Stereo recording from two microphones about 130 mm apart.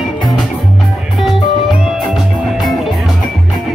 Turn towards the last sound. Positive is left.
turn(degrees=0)  # may be behind; listen again after turning